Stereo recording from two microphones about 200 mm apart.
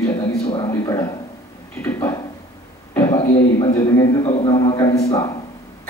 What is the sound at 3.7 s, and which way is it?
A man's voice, 15° left (ahead or behind).